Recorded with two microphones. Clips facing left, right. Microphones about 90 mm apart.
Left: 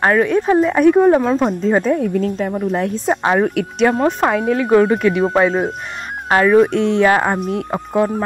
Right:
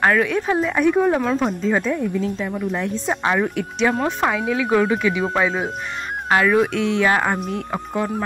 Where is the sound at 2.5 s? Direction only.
40° left (ahead or behind).